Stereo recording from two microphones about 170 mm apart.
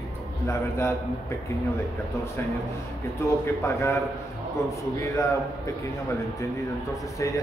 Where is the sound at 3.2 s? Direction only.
15° left (ahead or behind).